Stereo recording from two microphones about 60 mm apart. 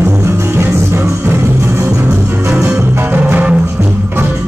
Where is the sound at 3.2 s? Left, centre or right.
Right.